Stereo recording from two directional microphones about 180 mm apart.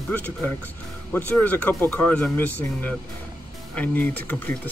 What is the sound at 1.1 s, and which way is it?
Speech, 10° left (ahead or behind).